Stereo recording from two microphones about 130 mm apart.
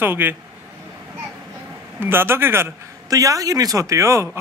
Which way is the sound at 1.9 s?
15° right (ahead or behind).